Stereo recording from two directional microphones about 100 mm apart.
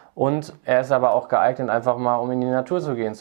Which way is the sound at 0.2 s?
15° right (ahead or behind).